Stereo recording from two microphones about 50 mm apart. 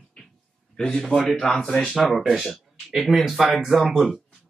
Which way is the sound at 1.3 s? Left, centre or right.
Centre.